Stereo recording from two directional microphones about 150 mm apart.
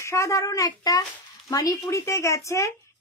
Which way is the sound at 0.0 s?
20° left (ahead or behind).